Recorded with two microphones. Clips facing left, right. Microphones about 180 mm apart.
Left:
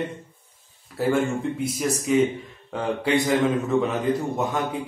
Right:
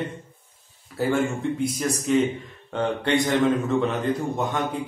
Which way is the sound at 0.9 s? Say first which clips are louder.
Left 1 dB; centre (ahead or behind).